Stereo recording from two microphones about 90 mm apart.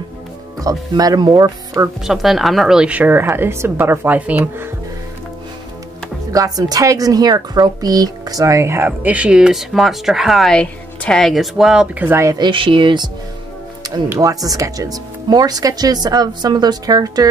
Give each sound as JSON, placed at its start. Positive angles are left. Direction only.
{"t": 0.6, "sound": "speech", "side_deg": -40}
{"t": 2.0, "sound": "a woman's voice", "side_deg": 0}
{"t": 6.3, "sound": "a woman's voice", "side_deg": -40}
{"t": 10.5, "sound": "speech", "side_deg": 10}
{"t": 12.0, "sound": "a woman's voice", "side_deg": -25}
{"t": 12.4, "sound": "speech", "side_deg": -70}
{"t": 13.8, "sound": "music", "side_deg": -45}
{"t": 14.2, "sound": "speech", "side_deg": -45}